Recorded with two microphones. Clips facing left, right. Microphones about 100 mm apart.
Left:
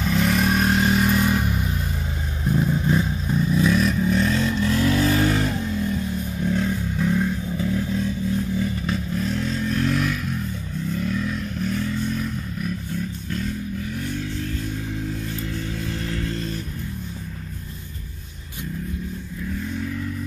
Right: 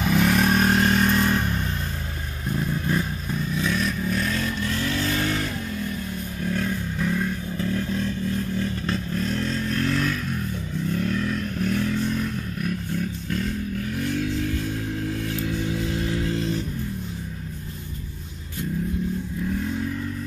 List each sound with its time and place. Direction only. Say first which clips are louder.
0.0 s vehicle: right 1 dB; 5° right (ahead or behind); by 3.3 s 20° left (ahead or behind)
3.6 s vehicle: left 4 dB; 35° left (ahead or behind); by 10.1 s 15° left (ahead or behind)
11.0 s vehicle: even; 5° left (ahead or behind)
13.9 s a sound: right 3 dB; centre (ahead or behind)
15.4 s music: right 3 dB; 5° right (ahead or behind)